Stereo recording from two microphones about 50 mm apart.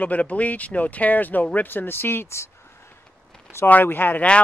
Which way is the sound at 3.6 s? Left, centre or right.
Left.